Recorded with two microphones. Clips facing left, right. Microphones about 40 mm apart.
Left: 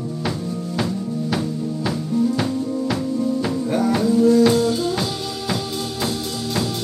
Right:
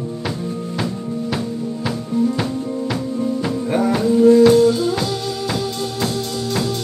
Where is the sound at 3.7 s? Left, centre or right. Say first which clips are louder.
Right 2 dB; right.